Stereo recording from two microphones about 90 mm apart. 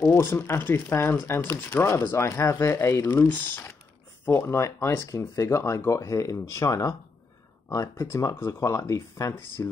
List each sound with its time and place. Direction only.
0.1 s speech: 25° left (ahead or behind)
3.2 s speech: 20° left (ahead or behind); by 7.0 s 40° left (ahead or behind)
8.0 s speech: 35° left (ahead or behind)